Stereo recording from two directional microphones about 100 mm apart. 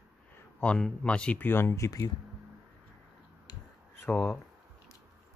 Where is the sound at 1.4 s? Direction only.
25° left (ahead or behind).